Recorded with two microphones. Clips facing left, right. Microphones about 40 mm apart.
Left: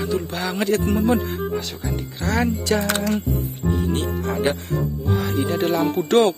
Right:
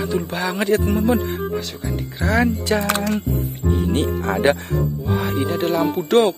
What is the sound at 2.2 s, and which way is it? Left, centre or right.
Speech, centre.